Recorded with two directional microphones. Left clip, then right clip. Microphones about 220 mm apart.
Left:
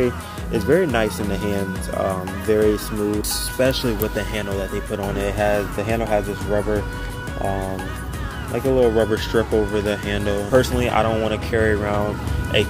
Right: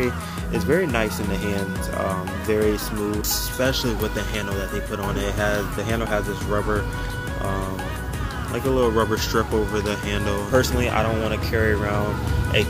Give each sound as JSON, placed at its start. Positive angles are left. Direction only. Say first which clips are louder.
{"t": 0.0, "sound": "speech", "louder": "left 3 dB", "side_deg": 10}
{"t": 4.9, "sound": "speech", "louder": "left 3 dB", "side_deg": 10}
{"t": 8.5, "sound": "speech", "louder": "left 3 dB", "side_deg": 0}